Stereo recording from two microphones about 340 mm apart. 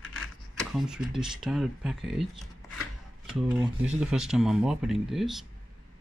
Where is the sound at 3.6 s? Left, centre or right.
Centre.